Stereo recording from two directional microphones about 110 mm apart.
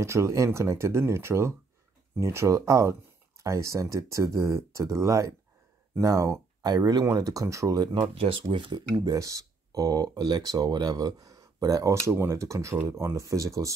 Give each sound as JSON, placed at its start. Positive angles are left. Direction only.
{"t": 0.0, "sound": "speech", "side_deg": -25}
{"t": 8.1, "sound": "speech", "side_deg": -55}
{"t": 8.9, "sound": "speech", "side_deg": -30}